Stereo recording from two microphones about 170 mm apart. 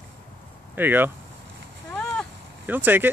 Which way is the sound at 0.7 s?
10° right (ahead or behind).